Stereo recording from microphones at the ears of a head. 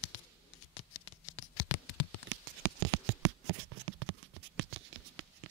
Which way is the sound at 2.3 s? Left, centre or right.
Right.